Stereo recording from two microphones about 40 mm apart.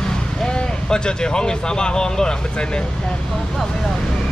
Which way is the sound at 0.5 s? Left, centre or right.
Centre.